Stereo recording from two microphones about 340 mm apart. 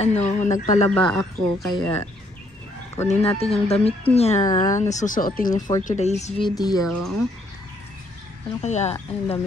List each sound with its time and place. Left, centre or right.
0.0 s speech: centre
0.8 s speech: centre
3.1 s speech: centre
8.5 s speech: centre